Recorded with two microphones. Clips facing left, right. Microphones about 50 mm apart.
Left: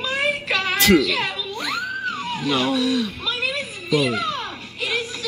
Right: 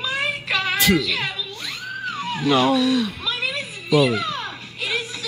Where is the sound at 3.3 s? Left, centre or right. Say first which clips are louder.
Left 1 dB; left.